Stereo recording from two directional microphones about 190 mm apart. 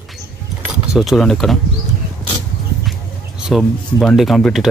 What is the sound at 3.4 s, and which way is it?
Speech, centre (ahead or behind).